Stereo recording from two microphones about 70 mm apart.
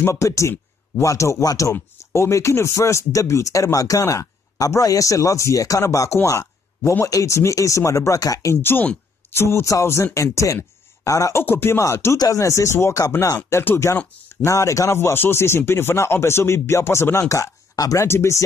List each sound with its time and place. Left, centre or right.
0.0 s speech: left
8.6 s speech: left
11.4 s speech: left
17.7 s speech: left
18.0 s speech: left